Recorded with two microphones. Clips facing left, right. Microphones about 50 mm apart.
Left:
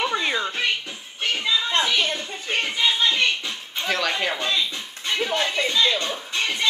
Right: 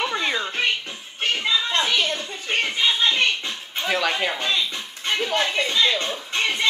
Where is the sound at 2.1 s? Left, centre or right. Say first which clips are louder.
Right 1 dB; right.